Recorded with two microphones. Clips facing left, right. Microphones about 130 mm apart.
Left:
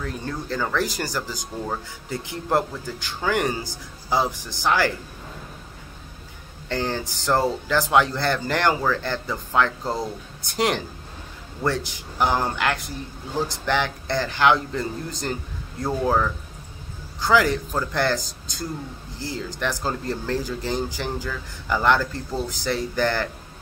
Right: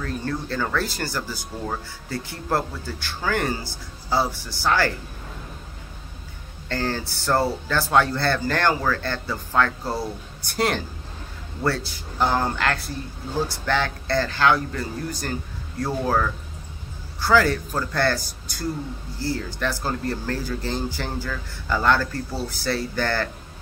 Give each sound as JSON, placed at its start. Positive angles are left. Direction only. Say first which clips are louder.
{"t": 0.0, "sound": "speech", "louder": "right 2 dB", "side_deg": 15}
{"t": 6.7, "sound": "speech", "louder": "even", "side_deg": 15}